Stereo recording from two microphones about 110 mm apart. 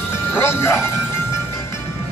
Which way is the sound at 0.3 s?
20° left (ahead or behind).